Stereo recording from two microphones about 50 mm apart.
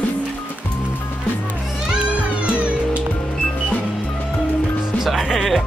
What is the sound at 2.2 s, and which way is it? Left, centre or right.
Music, right.